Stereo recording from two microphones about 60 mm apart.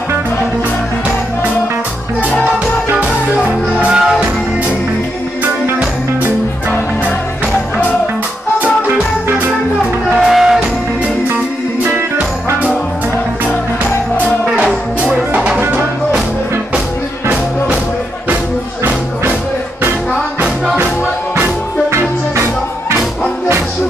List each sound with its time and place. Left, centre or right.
3.0 s music: right
5.4 s music: right
8.8 s music: right
10.2 s music: centre
14.4 s music: right
21.9 s music: right